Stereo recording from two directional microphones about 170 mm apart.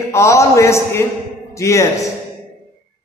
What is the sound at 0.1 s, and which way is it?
A man's voice, 15° left (ahead or behind).